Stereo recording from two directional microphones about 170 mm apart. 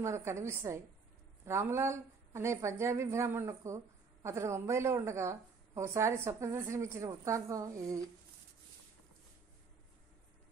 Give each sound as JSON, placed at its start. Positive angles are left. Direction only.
{"t": 0.0, "sound": "a woman's voice", "side_deg": -15}